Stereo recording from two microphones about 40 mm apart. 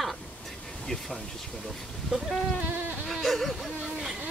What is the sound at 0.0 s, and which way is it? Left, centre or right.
Pink noise, centre.